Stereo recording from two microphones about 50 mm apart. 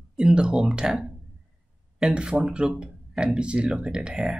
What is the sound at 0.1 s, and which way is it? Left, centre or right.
Speech, centre.